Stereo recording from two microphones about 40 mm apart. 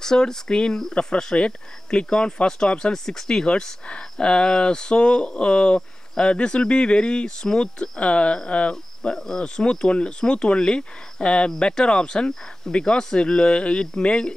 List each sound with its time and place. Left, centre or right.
0.0 s speech: centre; by 9.1 s left
9.1 s speech: centre